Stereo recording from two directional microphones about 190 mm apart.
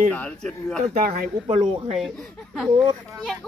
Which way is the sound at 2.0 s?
Centre (ahead or behind).